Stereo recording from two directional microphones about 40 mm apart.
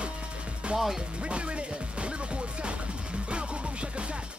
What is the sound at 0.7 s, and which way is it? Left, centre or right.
Speech, right.